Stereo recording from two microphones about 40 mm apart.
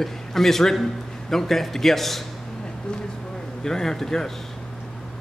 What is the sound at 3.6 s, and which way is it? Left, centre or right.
Speech, centre.